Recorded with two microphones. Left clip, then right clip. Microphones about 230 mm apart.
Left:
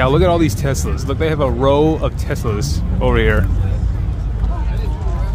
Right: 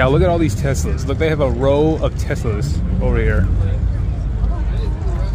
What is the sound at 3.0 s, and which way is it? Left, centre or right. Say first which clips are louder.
Speech: left 5 dB; left.